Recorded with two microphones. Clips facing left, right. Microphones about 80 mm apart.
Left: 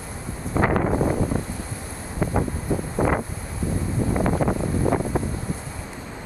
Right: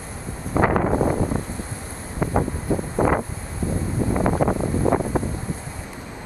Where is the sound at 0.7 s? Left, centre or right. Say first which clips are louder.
Right 1 dB; right.